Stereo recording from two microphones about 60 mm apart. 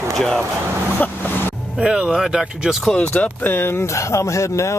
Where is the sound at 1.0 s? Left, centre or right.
Left.